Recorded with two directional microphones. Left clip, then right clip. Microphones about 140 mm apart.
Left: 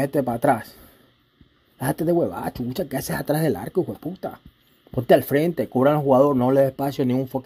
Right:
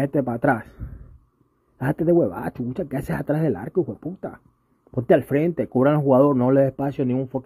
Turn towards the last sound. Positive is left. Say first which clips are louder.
# left 1 dB
turn(degrees=-15)  # may be behind; listen again after turning